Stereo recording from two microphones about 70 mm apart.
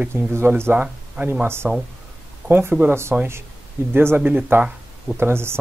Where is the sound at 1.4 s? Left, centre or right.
Right.